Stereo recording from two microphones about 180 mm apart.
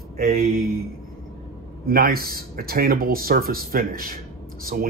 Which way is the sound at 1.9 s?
55° right (ahead or behind).